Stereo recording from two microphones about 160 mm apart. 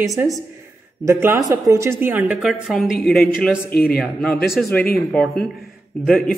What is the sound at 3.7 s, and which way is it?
Speech, 70° left (ahead or behind).